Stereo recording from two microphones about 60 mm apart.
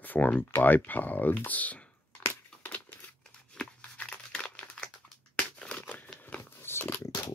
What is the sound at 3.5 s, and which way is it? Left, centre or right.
Crumpling, centre.